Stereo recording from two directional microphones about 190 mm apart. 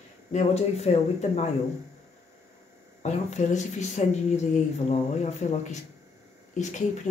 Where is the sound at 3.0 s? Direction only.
35° left (ahead or behind).